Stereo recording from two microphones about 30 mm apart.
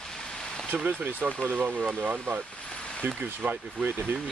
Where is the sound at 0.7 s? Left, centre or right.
Right.